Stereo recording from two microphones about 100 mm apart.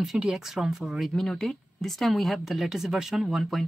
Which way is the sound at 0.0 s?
5° right (ahead or behind).